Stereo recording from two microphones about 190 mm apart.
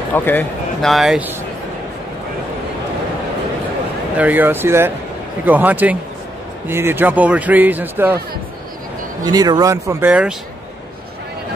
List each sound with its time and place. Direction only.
0.1 s speech: 10° left (ahead or behind)
4.2 s a man's voice: 10° right (ahead or behind)
9.2 s a man's voice: 20° right (ahead or behind)